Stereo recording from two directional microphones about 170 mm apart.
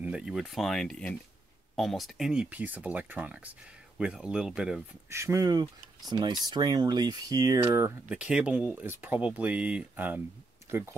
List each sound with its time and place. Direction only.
0.0 s speech: 5° right (ahead or behind)
5.1 s speech: 15° right (ahead or behind)
8.1 s speech: 5° right (ahead or behind)